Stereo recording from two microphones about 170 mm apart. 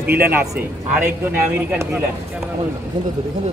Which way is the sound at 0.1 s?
10° right (ahead or behind).